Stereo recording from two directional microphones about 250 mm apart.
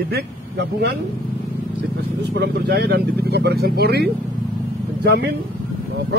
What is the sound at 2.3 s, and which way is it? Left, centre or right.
A man's voice, right.